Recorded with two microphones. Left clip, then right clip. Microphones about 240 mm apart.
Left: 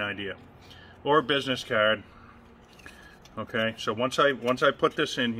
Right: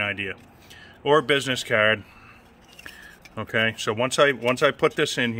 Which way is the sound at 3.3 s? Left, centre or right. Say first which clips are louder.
Right 5 dB; right.